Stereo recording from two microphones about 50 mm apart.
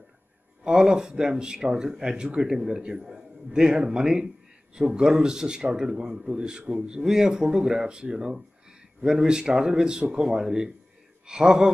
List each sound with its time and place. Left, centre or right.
0.7 s speech: centre